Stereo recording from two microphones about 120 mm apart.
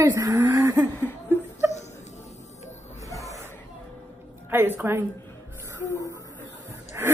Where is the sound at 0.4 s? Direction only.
20° right (ahead or behind).